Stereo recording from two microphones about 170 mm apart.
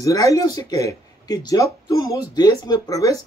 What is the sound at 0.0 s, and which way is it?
Speech, 20° left (ahead or behind).